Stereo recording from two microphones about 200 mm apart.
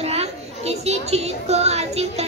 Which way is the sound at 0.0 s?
30° right (ahead or behind).